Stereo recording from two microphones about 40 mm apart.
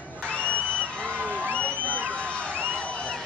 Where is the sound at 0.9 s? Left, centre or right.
Left.